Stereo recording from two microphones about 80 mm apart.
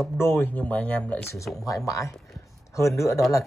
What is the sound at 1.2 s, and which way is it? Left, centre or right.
Speech, left.